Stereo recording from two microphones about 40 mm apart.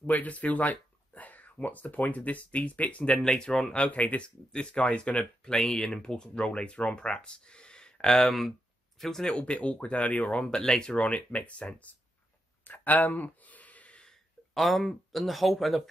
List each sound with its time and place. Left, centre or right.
0.0 s speech: left
3.2 s speech: centre
3.9 s speech: left
4.5 s speech: left
8.2 s speech: centre
9.2 s speech: left
11.1 s speech: left
12.6 s a sound: left
14.5 s speech: centre